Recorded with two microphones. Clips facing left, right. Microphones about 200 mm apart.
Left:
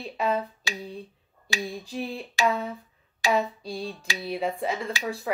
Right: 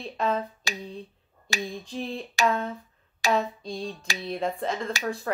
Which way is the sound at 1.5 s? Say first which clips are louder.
Even; 45° right (ahead or behind).